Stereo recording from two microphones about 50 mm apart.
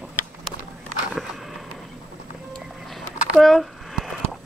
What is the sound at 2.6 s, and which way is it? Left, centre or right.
Music, centre.